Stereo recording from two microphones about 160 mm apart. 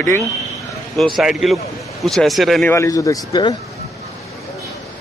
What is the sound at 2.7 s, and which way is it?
Speech, 20° left (ahead or behind).